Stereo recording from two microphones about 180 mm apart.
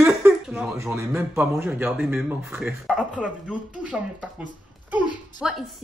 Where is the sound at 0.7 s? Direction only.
15° right (ahead or behind).